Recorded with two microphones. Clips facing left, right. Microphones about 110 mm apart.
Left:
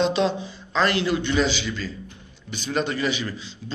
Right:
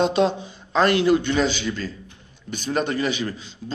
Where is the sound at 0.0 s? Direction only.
50° right (ahead or behind).